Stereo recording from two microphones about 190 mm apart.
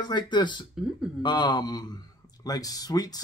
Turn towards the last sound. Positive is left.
turn(degrees=20)  # may be behind; listen again after turning